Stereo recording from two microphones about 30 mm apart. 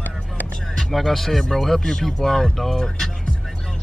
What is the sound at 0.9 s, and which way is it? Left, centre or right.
Speech, centre.